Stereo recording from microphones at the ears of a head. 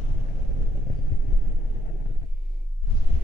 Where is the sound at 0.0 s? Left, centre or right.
Left.